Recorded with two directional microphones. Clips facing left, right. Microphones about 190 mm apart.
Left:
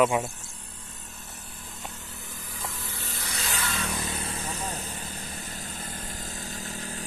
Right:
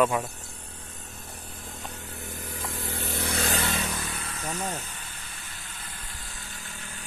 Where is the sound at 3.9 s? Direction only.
25° left (ahead or behind).